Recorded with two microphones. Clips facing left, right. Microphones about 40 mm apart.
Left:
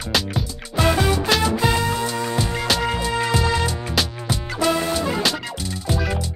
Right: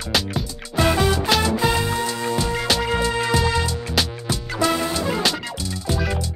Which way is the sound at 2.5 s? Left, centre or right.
Centre.